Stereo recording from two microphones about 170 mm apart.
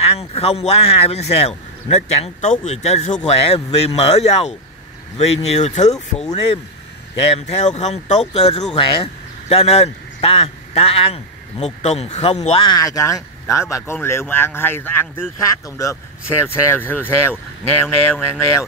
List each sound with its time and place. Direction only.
0.1 s speech: 35° left (ahead or behind)
7.2 s speech: 35° left (ahead or behind)
12.6 s speech: 20° left (ahead or behind)